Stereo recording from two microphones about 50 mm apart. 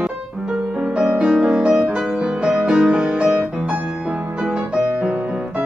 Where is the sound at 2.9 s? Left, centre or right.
Right.